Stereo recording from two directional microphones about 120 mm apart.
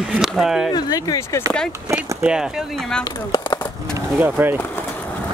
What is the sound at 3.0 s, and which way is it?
Speech, 30° left (ahead or behind).